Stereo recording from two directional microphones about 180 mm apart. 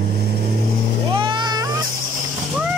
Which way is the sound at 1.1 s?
25° right (ahead or behind).